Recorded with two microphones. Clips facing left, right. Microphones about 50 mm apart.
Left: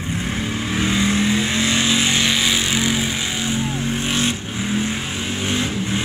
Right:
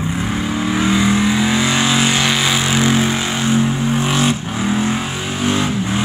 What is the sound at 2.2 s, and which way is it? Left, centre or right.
Vehicle, centre.